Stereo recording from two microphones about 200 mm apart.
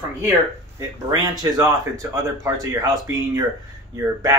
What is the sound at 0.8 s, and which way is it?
Speech, 20° right (ahead or behind).